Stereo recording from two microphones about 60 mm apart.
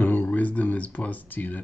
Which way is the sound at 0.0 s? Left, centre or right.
Left.